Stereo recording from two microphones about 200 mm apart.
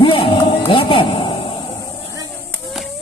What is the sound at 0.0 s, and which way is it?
Music, 25° left (ahead or behind).